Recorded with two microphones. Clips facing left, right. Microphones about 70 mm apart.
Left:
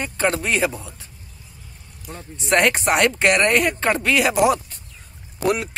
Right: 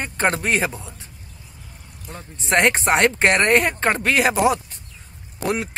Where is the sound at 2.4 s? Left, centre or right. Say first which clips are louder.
Even; right.